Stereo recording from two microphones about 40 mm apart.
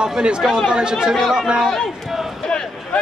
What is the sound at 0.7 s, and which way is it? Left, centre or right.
Speech, right.